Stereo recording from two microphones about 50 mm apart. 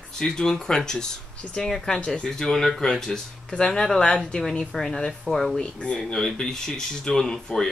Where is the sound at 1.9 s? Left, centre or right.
Left.